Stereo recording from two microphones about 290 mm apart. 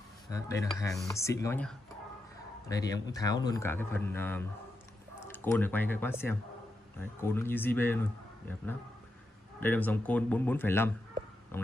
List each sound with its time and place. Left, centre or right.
0.3 s speech: centre